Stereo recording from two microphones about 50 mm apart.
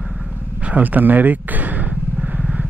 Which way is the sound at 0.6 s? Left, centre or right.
Right.